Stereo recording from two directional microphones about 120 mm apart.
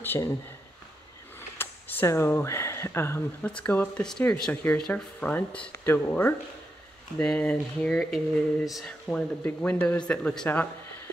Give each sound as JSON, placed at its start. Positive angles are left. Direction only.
{"t": 0.0, "sound": "speech", "side_deg": 20}
{"t": 1.6, "sound": "speech", "side_deg": 15}
{"t": 3.4, "sound": "speech", "side_deg": 10}
{"t": 9.0, "sound": "speech", "side_deg": 10}